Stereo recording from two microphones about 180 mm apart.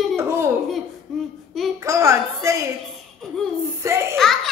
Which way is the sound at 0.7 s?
Centre (ahead or behind).